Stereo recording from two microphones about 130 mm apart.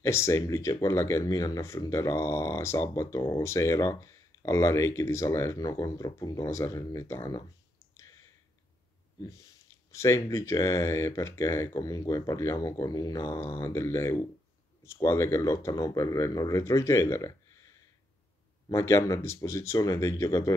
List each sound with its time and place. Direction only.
0.0 s speech: 20° left (ahead or behind)
7.9 s clicking: 20° left (ahead or behind)
9.8 s speech: 25° left (ahead or behind)